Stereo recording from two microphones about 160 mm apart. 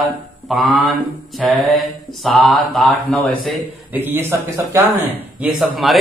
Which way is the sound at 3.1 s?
5° left (ahead or behind).